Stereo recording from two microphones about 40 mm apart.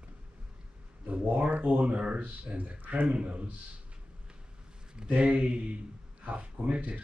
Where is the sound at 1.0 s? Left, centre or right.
Right.